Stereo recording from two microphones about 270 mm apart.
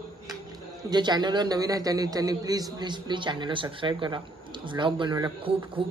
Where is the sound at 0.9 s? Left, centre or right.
Centre.